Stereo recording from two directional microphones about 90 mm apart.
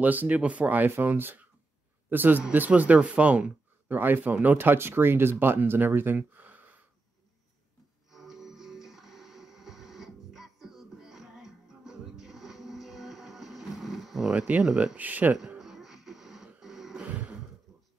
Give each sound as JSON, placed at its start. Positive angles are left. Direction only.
{"t": 0.0, "sound": "a man's voice", "side_deg": -20}
{"t": 8.1, "sound": "music", "side_deg": -5}
{"t": 14.5, "sound": "speech", "side_deg": -10}
{"t": 15.0, "sound": "speech", "side_deg": -20}
{"t": 15.3, "sound": "a sound", "side_deg": -5}
{"t": 16.4, "sound": "music", "side_deg": -5}
{"t": 17.1, "sound": "sigh", "side_deg": -15}